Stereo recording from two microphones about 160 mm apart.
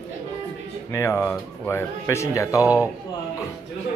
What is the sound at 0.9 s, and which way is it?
A man's voice, 15° left (ahead or behind).